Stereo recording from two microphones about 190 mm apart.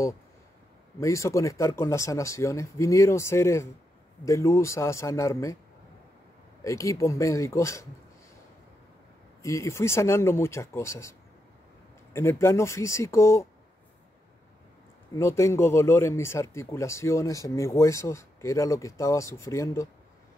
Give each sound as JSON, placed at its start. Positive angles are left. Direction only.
{"t": 0.9, "sound": "speech", "side_deg": 15}
{"t": 6.6, "sound": "speech", "side_deg": 15}
{"t": 9.4, "sound": "speech", "side_deg": 15}
{"t": 15.1, "sound": "speech", "side_deg": 15}